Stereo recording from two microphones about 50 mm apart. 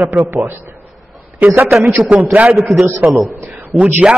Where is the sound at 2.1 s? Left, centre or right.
Right.